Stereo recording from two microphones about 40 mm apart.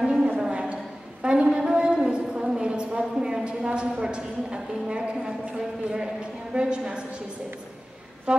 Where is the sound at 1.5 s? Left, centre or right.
Right.